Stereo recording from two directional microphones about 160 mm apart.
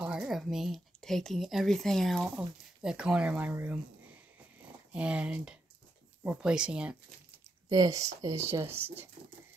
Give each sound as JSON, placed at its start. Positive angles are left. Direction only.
{"t": 0.0, "sound": "speech", "side_deg": -5}
{"t": 4.9, "sound": "speech", "side_deg": -5}
{"t": 7.7, "sound": "speech", "side_deg": -20}